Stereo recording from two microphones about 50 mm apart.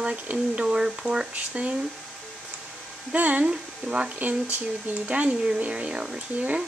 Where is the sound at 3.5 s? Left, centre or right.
Centre.